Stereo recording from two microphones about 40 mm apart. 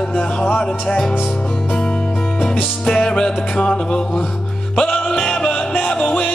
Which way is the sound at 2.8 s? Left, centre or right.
Centre.